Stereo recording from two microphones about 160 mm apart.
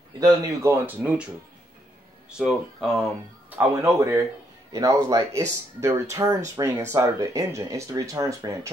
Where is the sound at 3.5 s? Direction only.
15° right (ahead or behind).